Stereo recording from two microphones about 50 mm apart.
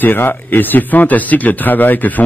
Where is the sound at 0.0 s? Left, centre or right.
Left.